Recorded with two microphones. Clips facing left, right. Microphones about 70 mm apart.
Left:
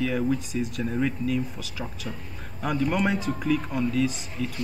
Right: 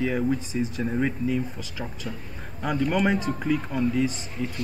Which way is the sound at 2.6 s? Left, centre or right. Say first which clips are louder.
Right 1 dB; right.